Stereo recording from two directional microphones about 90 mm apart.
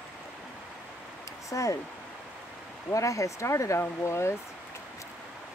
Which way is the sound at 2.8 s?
35° left (ahead or behind).